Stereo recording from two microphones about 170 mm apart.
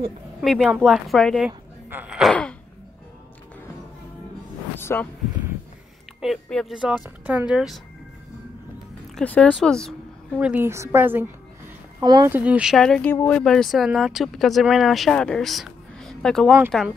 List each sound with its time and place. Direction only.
0.4 s speech: centre (ahead or behind)
1.9 s gasp: 10° right (ahead or behind)
4.7 s a sound: 15° left (ahead or behind)
6.2 s speech: centre (ahead or behind)
9.1 s a woman's voice: 5° left (ahead or behind)
10.5 s a woman's voice: 15° right (ahead or behind)
12.0 s speech: 25° right (ahead or behind)
12.3 s speech: 10° right (ahead or behind)